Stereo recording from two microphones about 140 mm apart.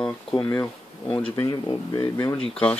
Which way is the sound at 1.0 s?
40° left (ahead or behind).